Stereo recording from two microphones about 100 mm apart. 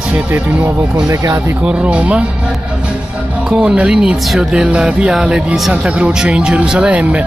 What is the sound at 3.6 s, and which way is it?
Speech, 10° right (ahead or behind).